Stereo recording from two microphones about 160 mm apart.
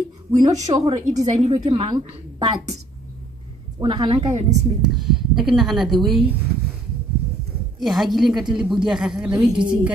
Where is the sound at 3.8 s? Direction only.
25° right (ahead or behind).